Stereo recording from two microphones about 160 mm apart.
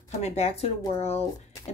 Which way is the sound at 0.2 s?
40° left (ahead or behind).